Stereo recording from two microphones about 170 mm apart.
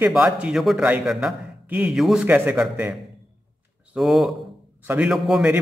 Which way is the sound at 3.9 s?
Centre (ahead or behind).